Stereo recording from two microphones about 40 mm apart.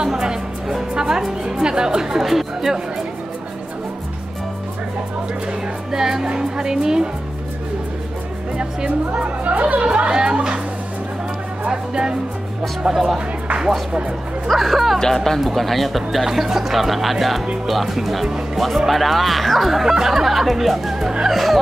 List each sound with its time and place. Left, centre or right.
0.1 s music: centre
0.9 s a woman's voice: centre
5.9 s a woman's voice: centre
8.5 s speech: right
9.4 s speech: right
9.8 s speech: right
11.6 s speech: right
12.8 s speech: centre
14.5 s speech: centre
15.0 s speech: centre